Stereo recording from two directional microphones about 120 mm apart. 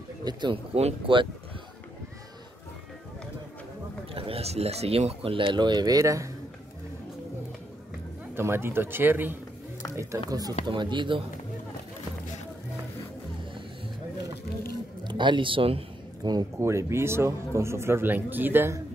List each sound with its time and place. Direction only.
0.2 s speech: 35° right (ahead or behind)
0.7 s speech: 50° right (ahead or behind)
4.1 s speech: 50° right (ahead or behind); by 6.3 s 25° right (ahead or behind)
8.4 s a man's voice: 20° right (ahead or behind)
9.9 s a man's voice: 30° right (ahead or behind)
10.7 s speech: 40° right (ahead or behind)
15.0 s speech: 40° right (ahead or behind)
16.2 s speech: 35° right (ahead or behind)
16.5 s a man's voice: 20° right (ahead or behind)